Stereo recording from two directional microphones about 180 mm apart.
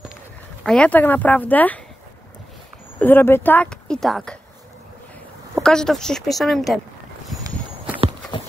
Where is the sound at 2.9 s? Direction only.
10° left (ahead or behind).